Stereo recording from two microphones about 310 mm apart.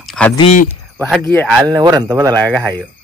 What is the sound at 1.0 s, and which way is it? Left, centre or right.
Speech, centre.